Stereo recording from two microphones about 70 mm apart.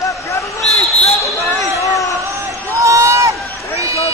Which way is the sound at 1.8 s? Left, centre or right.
Left.